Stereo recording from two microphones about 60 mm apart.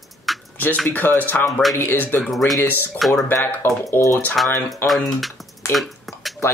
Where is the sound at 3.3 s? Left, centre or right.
Left.